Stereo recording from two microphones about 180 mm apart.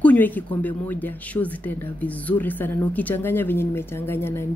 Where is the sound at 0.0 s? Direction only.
10° left (ahead or behind).